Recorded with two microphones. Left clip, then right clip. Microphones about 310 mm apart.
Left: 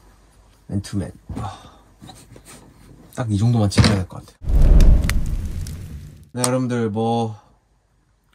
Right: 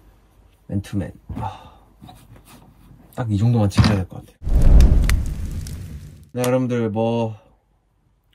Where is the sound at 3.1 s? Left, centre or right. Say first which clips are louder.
Left 1 dB; right.